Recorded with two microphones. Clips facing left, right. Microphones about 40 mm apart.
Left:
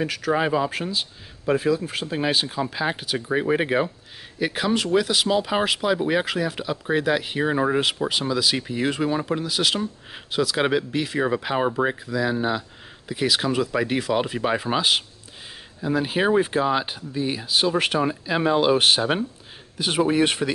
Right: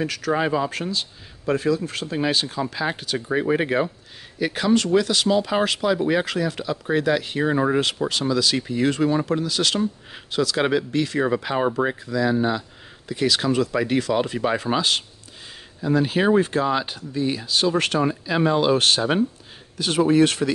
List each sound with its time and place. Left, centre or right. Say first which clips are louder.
0.0 s speech: even; centre